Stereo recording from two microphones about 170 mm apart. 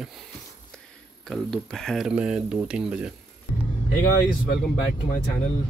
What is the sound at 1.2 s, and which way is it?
Speech, 5° left (ahead or behind).